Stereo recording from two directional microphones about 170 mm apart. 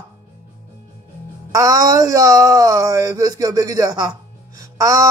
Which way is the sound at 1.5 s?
20° right (ahead or behind).